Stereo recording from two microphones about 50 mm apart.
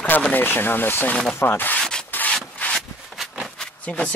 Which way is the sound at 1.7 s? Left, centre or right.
Centre.